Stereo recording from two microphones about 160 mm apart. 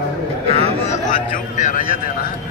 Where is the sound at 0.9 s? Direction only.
50° left (ahead or behind).